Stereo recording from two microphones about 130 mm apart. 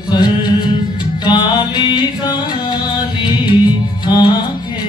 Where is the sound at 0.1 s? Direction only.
35° left (ahead or behind).